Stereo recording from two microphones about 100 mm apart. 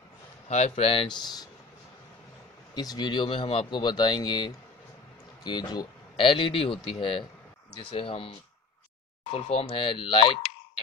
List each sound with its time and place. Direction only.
0.6 s speech: 90° left
1.0 s speech: 45° left (ahead or behind)
2.7 s speech: 40° left (ahead or behind)
6.2 s speech: 60° left (ahead or behind)
7.9 s speech: 70° left (ahead or behind)
9.3 s speech: 90° left; by 10.3 s 60° left (ahead or behind)